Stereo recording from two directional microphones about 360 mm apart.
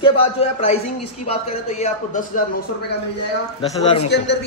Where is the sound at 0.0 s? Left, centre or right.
Centre.